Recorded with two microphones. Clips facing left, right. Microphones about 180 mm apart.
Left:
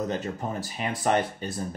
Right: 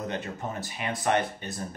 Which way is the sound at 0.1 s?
35° left (ahead or behind).